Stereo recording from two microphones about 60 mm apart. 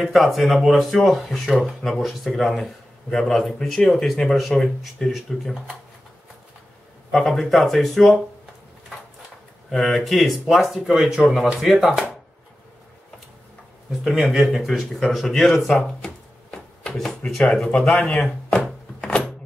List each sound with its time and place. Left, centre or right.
0.0 s a man's voice: centre
7.1 s a man's voice: centre
9.7 s a man's voice: centre
14.2 s speech: centre
18.9 s a sound: centre